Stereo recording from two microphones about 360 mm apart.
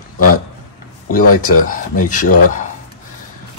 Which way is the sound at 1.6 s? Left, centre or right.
Left.